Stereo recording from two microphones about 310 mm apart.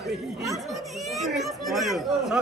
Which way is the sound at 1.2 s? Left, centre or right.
Centre.